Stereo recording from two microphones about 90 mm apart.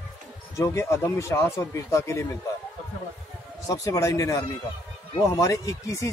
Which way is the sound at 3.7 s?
40° left (ahead or behind).